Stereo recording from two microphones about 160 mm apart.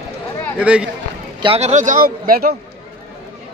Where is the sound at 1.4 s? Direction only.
40° right (ahead or behind); by 2.5 s 65° right (ahead or behind).